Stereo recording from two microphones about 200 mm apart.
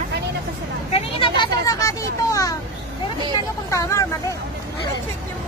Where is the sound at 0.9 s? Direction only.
25° left (ahead or behind).